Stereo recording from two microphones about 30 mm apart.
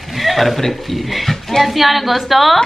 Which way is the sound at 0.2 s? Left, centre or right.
Centre.